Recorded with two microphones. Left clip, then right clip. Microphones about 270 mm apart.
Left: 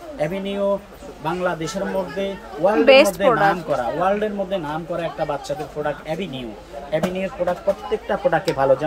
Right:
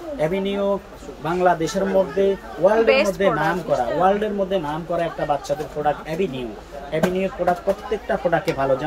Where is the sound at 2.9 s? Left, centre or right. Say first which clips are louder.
Left 5 dB; left.